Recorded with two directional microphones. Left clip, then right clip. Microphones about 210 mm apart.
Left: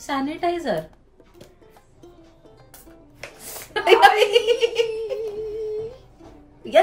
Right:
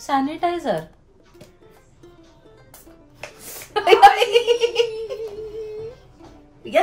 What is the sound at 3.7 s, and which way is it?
Giggle, 15° right (ahead or behind).